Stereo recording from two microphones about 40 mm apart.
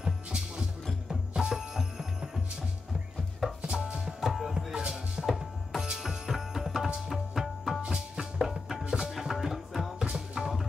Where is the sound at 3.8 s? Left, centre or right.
Right.